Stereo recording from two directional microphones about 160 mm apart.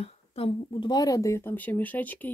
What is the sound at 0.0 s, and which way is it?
Speech, 35° left (ahead or behind).